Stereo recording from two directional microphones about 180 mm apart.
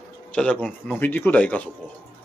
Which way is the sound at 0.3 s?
5° left (ahead or behind).